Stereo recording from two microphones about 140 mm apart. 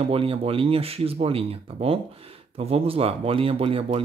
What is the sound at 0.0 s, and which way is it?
Speech, 40° right (ahead or behind).